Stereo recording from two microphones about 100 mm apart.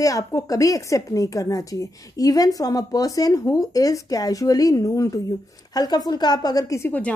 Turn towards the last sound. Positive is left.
turn(degrees=30)  # may be behind; listen again after turning